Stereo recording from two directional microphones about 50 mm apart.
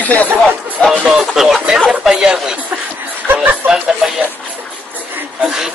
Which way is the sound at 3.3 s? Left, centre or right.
Right.